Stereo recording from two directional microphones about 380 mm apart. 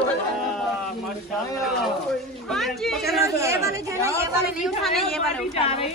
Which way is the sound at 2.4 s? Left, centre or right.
Centre.